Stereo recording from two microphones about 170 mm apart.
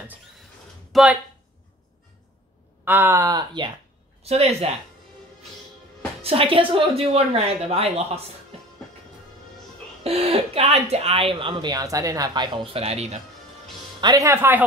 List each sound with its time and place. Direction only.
0.9 s speech: 5° right (ahead or behind)
2.8 s speech: 10° right (ahead or behind)
4.2 s speech: 40° right (ahead or behind)
6.2 s speech: 35° right (ahead or behind)
10.0 s speech: 35° right (ahead or behind)
14.0 s speech: 20° right (ahead or behind)